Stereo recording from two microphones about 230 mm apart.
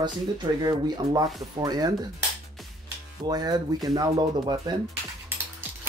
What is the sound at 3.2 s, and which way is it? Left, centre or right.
Speech, centre.